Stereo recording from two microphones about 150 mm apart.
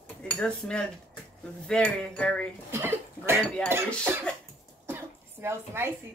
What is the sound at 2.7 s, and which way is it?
Cough, 15° right (ahead or behind).